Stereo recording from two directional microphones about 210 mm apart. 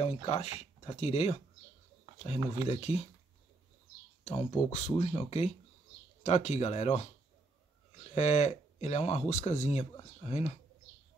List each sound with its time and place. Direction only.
0.0 s speech: 30° left (ahead or behind)
2.4 s speech: 15° right (ahead or behind)
2.7 s speech: 30° left (ahead or behind)
4.2 s speech: 30° left (ahead or behind)
8.1 s speech: 35° left (ahead or behind)